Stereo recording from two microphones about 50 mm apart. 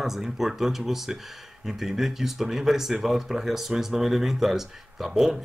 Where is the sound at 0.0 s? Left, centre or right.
Centre.